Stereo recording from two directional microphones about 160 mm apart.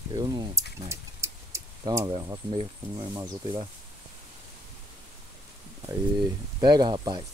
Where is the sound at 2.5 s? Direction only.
35° right (ahead or behind).